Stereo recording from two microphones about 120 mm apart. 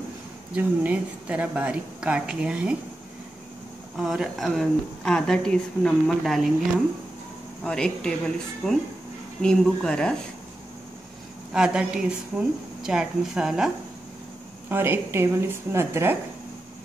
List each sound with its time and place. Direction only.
0.6 s a woman's voice: 10° right (ahead or behind)
3.9 s a woman's voice: centre (ahead or behind)
7.6 s a woman's voice: 10° left (ahead or behind)
11.5 s a woman's voice: 5° right (ahead or behind)
14.7 s a woman's voice: 20° right (ahead or behind)